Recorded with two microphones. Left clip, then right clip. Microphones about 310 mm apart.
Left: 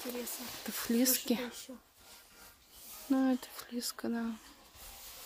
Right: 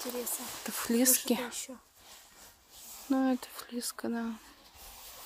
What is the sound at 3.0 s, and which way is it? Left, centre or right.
Speech, centre.